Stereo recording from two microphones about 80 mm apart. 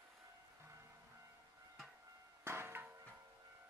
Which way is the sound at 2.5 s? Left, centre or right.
Right.